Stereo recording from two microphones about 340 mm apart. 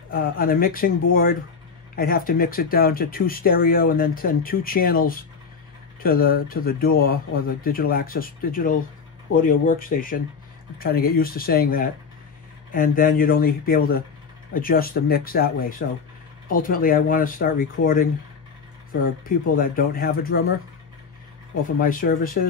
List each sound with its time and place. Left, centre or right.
0.1 s speech: left
19.2 s speech: left
21.8 s speech: left